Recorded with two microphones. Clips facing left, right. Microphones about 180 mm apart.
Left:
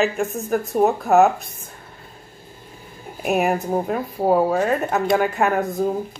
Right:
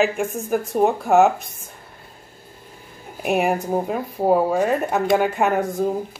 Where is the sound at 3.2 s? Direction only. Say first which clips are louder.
Even; 5° right (ahead or behind).